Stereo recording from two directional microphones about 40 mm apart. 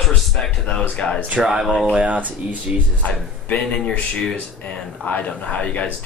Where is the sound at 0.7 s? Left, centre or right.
Left.